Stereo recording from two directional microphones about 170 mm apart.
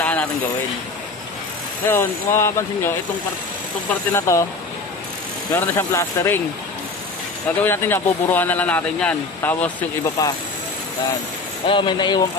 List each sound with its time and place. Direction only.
0.0 s a sound: 10° left (ahead or behind)
1.9 s speech: 15° left (ahead or behind)
5.5 s speech: 15° left (ahead or behind)
7.6 s speech: 15° left (ahead or behind)
10.2 s speech: 20° left (ahead or behind)
11.6 s speech: 30° left (ahead or behind)